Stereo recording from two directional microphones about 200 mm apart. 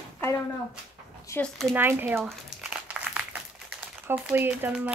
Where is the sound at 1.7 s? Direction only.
10° right (ahead or behind).